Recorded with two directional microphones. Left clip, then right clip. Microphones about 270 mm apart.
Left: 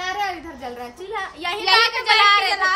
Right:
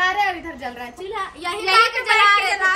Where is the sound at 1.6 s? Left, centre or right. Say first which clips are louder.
Right 1 dB; left.